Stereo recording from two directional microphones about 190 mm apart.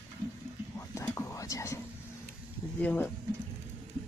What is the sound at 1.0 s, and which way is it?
Whispering, 15° left (ahead or behind).